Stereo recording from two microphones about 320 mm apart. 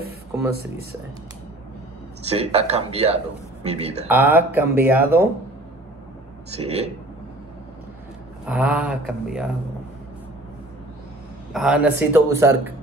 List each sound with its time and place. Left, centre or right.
2.2 s speech: centre
4.1 s a man's voice: centre
6.5 s speech: centre
8.5 s a man's voice: centre
11.5 s a man's voice: centre